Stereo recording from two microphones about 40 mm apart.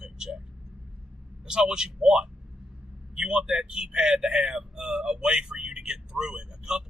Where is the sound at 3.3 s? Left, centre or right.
Centre.